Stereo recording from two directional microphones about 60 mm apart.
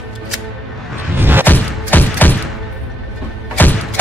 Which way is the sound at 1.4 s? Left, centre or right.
Left.